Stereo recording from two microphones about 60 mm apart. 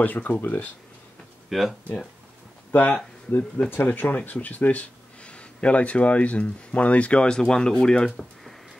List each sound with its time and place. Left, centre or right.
0.0 s speech: left
1.5 s speech: centre
3.3 s speech: left; by 8.3 s centre